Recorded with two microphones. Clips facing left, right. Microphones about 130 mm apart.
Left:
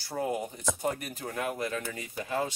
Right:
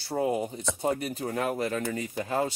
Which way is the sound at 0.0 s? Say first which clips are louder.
Right 4 dB; 25° right (ahead or behind).